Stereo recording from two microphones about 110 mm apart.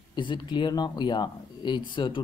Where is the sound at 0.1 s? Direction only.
45° left (ahead or behind).